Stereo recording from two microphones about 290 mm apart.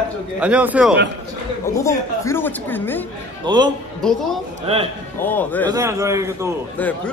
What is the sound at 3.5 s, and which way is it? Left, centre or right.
Speech, centre.